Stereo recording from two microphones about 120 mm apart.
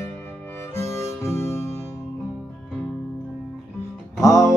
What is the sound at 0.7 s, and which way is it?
Harmonica, 25° left (ahead or behind).